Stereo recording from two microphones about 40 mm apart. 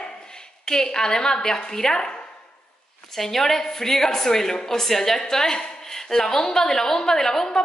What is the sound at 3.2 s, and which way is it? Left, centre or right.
A woman's voice, centre.